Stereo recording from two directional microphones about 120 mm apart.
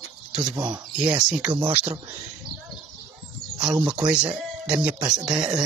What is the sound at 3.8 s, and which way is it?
Speech, 10° right (ahead or behind).